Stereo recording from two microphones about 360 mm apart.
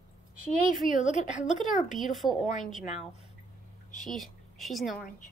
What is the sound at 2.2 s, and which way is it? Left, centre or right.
Speech, centre.